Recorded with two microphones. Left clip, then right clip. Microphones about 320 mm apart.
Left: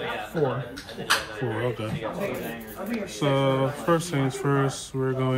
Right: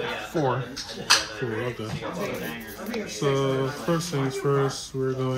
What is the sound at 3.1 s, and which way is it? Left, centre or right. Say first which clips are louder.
Speech: left 1 dB; left.